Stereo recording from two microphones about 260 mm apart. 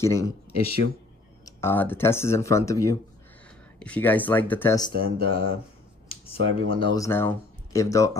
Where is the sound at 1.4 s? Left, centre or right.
Centre.